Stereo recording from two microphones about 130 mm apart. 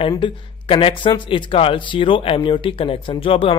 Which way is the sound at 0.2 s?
45° left (ahead or behind).